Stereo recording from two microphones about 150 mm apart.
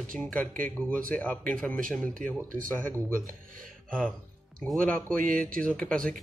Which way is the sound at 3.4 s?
65° right (ahead or behind).